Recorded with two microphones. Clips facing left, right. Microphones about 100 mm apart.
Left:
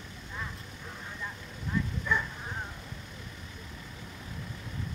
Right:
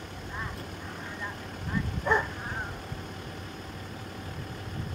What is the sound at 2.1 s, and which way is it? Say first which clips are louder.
Dog: right 6 dB; 60° right (ahead or behind).